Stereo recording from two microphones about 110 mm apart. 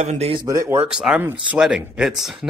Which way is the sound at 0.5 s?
25° right (ahead or behind).